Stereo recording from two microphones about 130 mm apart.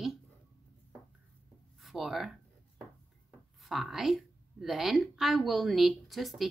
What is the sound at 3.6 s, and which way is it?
A woman's voice, centre (ahead or behind).